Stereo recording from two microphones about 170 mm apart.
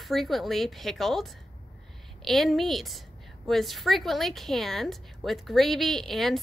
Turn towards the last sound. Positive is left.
turn(degrees=0)  # may be behind; listen again after turning